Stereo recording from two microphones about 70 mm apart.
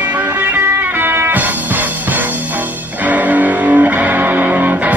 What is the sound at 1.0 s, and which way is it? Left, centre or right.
Music, right.